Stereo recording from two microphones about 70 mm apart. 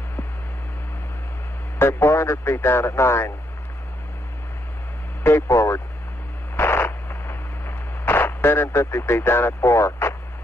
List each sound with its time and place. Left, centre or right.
1.8 s speech: left
5.2 s speech: left
6.5 s radio: left